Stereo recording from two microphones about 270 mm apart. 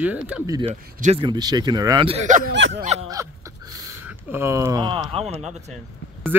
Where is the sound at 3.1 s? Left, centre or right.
Centre.